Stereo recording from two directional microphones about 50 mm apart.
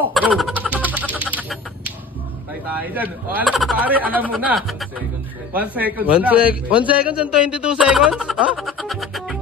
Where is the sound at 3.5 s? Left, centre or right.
Centre.